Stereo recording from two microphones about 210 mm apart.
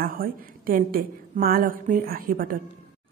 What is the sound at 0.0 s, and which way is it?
A woman's voice, 45° right (ahead or behind).